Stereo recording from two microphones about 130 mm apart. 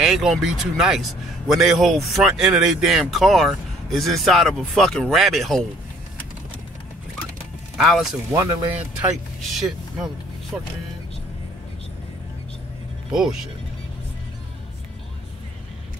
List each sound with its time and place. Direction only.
0.0 s speech: centre (ahead or behind)
7.7 s speech: 5° right (ahead or behind)
8.3 s speech: 20° right (ahead or behind)
8.7 s speech: 5° right (ahead or behind)